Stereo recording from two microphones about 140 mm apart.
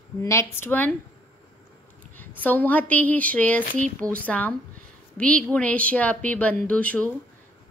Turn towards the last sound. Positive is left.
turn(degrees=10)  # may be behind; listen again after turning